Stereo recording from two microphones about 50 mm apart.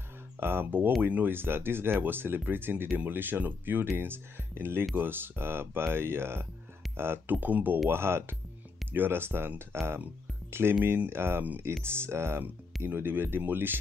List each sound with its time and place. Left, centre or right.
0.4 s speech: right
7.2 s speech: right
7.9 s speech: right
12.8 s speech: right